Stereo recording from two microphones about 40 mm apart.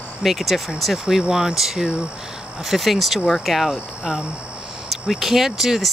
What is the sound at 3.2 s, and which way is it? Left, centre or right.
Speech, centre.